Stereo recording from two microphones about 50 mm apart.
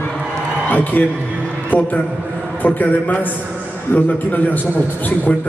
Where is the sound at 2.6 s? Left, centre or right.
Left.